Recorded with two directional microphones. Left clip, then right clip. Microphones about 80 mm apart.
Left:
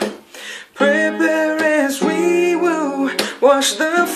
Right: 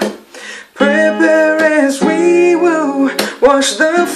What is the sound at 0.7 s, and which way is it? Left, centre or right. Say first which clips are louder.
Music: right 4 dB; centre.